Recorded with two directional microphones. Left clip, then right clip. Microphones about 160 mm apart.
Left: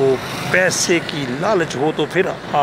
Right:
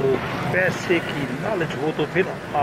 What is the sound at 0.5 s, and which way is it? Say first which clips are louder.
Speech: left 6 dB; 40° left (ahead or behind).